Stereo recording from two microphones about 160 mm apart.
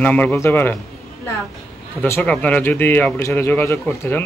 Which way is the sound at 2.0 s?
15° left (ahead or behind).